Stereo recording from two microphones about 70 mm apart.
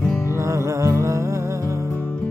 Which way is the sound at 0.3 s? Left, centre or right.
Right.